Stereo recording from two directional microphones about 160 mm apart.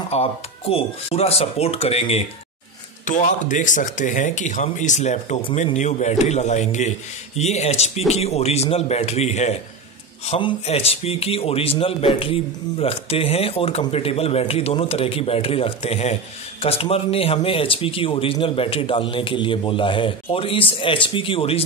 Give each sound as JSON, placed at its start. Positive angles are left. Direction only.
{"t": 0.1, "sound": "speech", "side_deg": 40}
{"t": 3.1, "sound": "speech", "side_deg": 50}